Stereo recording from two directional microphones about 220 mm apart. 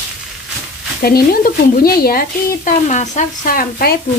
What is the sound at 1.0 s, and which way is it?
Speech, 45° left (ahead or behind).